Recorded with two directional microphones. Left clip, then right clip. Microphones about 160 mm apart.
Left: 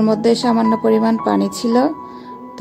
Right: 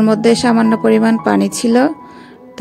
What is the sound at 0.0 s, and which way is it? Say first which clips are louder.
Speech: right 3 dB; 40° right (ahead or behind).